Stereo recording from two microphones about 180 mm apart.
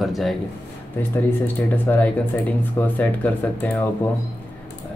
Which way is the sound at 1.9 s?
10° left (ahead or behind).